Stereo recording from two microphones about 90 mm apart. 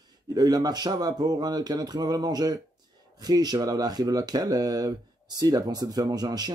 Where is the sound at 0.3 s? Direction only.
45° right (ahead or behind).